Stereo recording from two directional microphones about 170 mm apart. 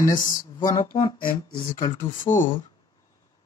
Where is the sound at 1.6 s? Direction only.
50° left (ahead or behind).